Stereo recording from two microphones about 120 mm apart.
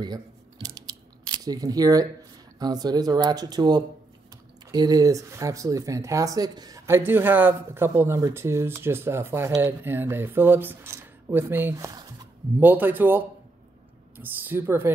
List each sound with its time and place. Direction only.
0.0 s scissors: 35° right (ahead or behind)
2.6 s speech: 35° right (ahead or behind)
6.9 s speech: 20° right (ahead or behind)
11.7 s speech: 30° right (ahead or behind)
12.5 s speech: 15° right (ahead or behind)